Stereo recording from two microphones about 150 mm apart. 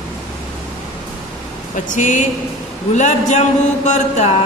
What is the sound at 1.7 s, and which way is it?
A man's voice, 55° left (ahead or behind).